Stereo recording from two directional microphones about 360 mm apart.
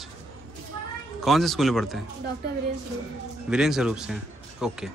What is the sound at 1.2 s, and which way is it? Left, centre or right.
Speech, centre.